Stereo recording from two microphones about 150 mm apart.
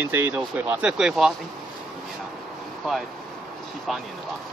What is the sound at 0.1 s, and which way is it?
Speech, 15° right (ahead or behind).